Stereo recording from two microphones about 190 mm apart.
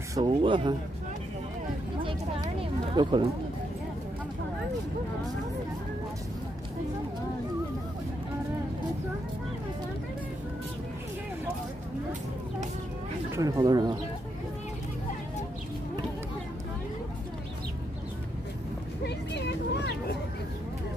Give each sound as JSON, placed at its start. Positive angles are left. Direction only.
{"t": 0.2, "sound": "speech", "side_deg": -25}
{"t": 3.0, "sound": "speech", "side_deg": -25}
{"t": 13.3, "sound": "speech", "side_deg": -20}
{"t": 19.0, "sound": "vehicle", "side_deg": 65}